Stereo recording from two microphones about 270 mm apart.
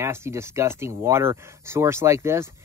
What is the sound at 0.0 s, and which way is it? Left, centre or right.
Speech, centre.